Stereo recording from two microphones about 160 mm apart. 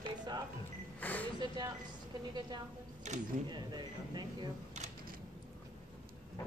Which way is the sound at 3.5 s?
25° right (ahead or behind).